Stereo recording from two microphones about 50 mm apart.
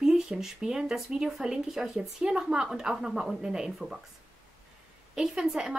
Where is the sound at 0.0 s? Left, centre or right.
Centre.